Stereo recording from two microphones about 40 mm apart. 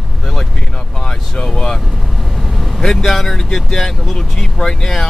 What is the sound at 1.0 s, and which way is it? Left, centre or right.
Vehicle, centre.